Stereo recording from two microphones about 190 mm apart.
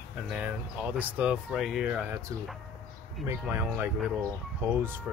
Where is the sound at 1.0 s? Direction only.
5° right (ahead or behind).